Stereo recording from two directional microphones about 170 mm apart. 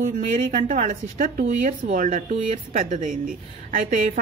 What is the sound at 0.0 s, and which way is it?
Speech, 50° right (ahead or behind).